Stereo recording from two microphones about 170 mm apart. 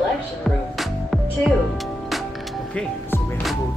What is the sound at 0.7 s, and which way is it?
Music, centre (ahead or behind).